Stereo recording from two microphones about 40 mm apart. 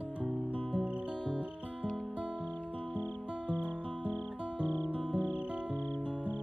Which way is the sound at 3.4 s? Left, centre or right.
Right.